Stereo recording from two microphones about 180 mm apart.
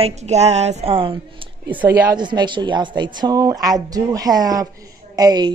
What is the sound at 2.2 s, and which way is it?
A man's voice, 25° right (ahead or behind).